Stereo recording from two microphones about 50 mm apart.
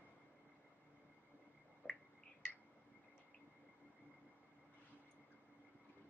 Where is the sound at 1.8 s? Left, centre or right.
Left.